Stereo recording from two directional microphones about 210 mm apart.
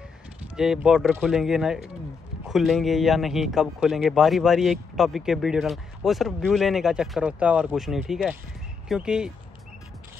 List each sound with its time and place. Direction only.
0.6 s a man's voice: centre (ahead or behind)